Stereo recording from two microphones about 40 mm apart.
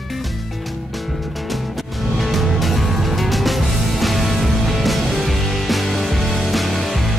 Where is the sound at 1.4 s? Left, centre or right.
Centre.